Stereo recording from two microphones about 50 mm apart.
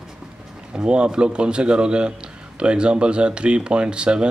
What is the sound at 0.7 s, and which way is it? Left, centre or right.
Speech, centre.